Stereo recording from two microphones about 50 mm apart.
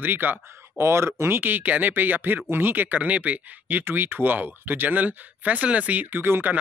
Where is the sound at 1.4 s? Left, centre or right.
Right.